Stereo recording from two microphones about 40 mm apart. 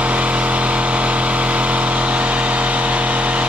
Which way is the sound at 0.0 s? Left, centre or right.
Right.